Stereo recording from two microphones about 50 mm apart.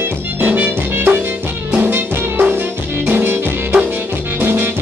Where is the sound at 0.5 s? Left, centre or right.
Right.